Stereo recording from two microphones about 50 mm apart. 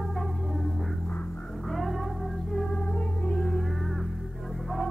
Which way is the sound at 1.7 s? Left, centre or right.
Centre.